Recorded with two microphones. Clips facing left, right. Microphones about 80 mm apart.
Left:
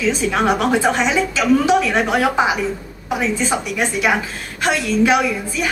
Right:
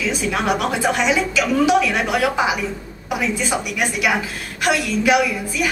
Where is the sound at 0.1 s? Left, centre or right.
Left.